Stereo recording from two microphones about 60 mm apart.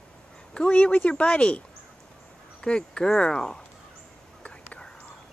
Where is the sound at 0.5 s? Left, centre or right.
Centre.